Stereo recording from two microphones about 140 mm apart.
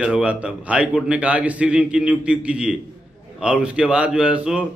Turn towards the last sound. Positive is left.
turn(degrees=-10)  # may be behind; listen again after turning